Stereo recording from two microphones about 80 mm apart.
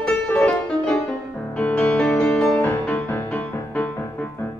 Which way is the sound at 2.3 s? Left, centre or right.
Centre.